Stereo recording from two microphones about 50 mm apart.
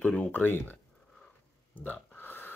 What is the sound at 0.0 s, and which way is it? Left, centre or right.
Speech, left.